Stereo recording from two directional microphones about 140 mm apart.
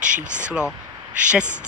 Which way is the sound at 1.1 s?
10° right (ahead or behind).